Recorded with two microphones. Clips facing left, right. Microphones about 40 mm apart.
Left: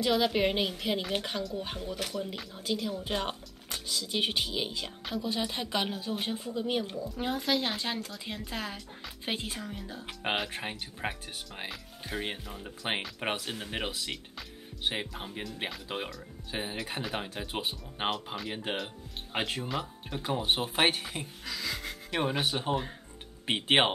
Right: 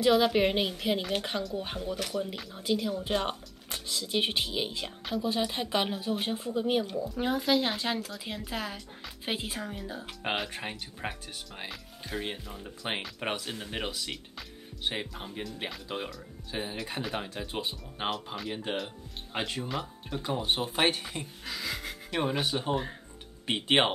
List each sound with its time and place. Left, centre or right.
0.0 s a woman's voice: centre
10.5 s speech: centre
18.1 s a woman's voice: centre
18.5 s speech: centre
19.7 s a woman's voice: centre